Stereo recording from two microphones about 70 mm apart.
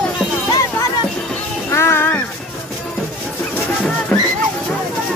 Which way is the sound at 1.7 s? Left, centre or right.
Left.